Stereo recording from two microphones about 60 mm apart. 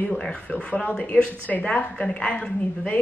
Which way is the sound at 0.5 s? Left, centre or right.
Left.